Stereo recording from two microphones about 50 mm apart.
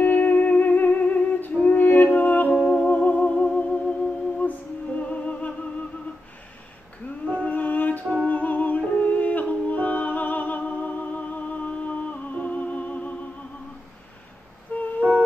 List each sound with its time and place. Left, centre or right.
0.0 s music: left
2.5 s music: left
2.9 s music: left
7.2 s a sound: left
8.3 s music: left
15.0 s music: right